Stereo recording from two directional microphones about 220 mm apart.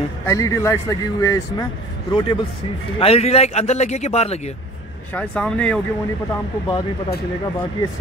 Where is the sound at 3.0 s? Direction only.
25° left (ahead or behind).